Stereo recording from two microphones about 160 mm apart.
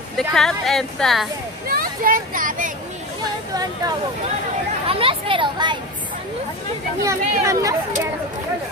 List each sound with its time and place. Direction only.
0.2 s a woman's voice: centre (ahead or behind)
1.7 s speech: 60° right (ahead or behind)
4.8 s speech: 35° right (ahead or behind)
7.1 s speech: 20° right (ahead or behind)